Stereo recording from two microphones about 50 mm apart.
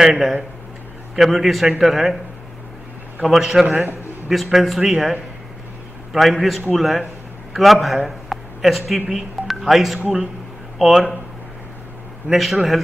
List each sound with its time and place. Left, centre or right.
0.0 s a man's voice: centre
3.3 s a man's voice: centre
3.6 s a man's voice: right
4.5 s a man's voice: centre
12.3 s a man's voice: centre